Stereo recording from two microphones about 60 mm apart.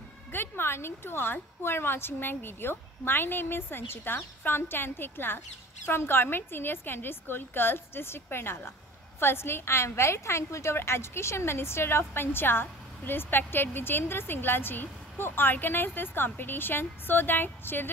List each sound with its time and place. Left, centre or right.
0.3 s a woman's voice: left